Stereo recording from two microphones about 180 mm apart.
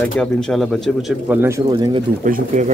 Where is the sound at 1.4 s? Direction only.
15° right (ahead or behind).